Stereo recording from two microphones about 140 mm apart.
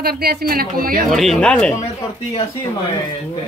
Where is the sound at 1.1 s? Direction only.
Centre (ahead or behind).